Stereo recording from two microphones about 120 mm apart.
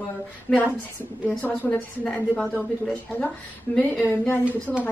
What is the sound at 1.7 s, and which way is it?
A woman's voice, 10° left (ahead or behind).